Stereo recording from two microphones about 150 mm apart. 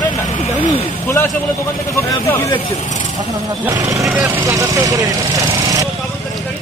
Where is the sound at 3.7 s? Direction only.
25° right (ahead or behind).